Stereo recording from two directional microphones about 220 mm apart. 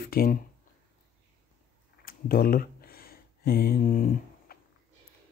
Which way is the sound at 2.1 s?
40° left (ahead or behind).